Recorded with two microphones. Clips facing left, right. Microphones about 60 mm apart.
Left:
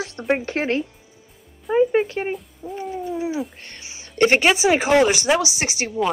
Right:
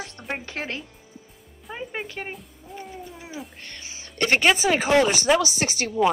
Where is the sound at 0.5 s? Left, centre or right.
Left.